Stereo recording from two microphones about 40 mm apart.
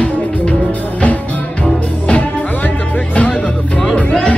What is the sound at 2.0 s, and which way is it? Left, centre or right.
Music, left.